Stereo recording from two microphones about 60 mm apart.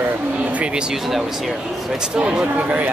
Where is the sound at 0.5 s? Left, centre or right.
Centre.